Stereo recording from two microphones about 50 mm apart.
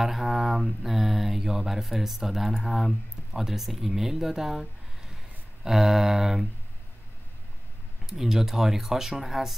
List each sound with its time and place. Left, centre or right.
0.0 s mantra: centre
3.3 s speech: centre
8.1 s speech: centre